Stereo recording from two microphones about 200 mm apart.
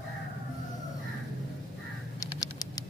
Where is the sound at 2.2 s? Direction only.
20° left (ahead or behind).